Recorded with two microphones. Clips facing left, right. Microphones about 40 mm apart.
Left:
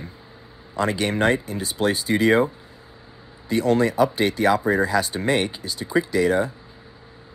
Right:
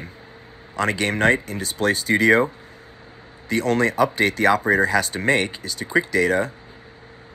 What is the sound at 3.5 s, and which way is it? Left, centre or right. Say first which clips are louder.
Speech: even; right.